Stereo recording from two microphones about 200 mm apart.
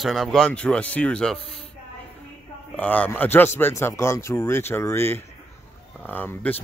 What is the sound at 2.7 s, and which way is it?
Speech, 5° left (ahead or behind).